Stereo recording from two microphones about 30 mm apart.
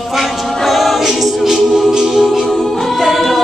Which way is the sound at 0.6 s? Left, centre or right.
Centre.